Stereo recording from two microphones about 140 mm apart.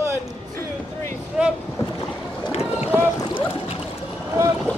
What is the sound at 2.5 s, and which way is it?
Boat, 45° left (ahead or behind).